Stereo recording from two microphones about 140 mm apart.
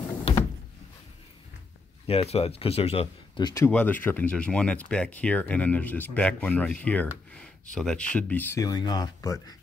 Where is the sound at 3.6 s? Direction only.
10° left (ahead or behind).